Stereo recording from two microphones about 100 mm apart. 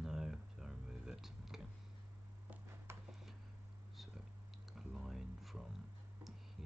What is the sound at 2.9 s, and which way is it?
Tick-tock, 25° right (ahead or behind).